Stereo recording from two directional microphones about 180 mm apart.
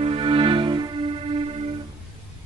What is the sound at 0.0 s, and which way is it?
Music, 30° right (ahead or behind).